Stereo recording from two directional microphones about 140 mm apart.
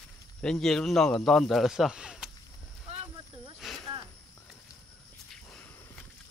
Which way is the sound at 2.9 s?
45° right (ahead or behind).